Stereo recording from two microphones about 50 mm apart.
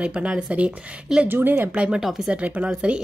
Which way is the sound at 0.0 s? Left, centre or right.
Right.